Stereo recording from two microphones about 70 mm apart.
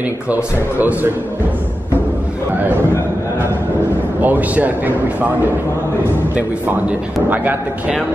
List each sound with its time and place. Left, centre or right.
0.3 s speech: right
4.2 s speech: right